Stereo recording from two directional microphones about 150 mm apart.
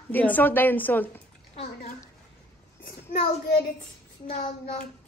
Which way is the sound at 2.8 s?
70° left (ahead or behind).